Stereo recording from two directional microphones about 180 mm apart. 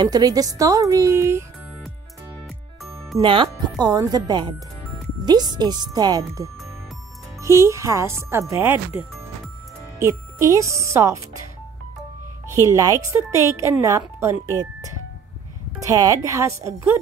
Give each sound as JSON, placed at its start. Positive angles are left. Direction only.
{"t": 0.0, "sound": "a woman's voice", "side_deg": -20}
{"t": 3.2, "sound": "a woman's voice", "side_deg": -25}
{"t": 9.9, "sound": "speech", "side_deg": -15}
{"t": 12.4, "sound": "speech", "side_deg": -15}